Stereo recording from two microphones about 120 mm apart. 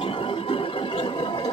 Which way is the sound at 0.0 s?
50° left (ahead or behind).